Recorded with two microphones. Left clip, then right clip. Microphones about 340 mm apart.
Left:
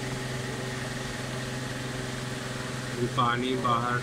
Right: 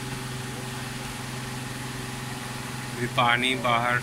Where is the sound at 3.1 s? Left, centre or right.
Centre.